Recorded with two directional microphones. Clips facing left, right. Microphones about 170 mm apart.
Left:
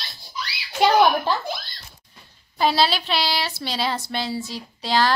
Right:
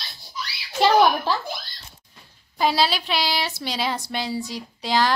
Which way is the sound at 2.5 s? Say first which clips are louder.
Left 1 dB; 10° right (ahead or behind).